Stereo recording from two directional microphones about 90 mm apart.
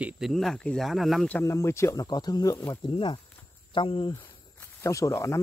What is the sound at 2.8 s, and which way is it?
Speech, 65° left (ahead or behind).